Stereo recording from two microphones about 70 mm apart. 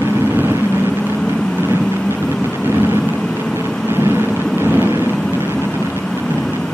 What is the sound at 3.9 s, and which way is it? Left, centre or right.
Vehicle, right.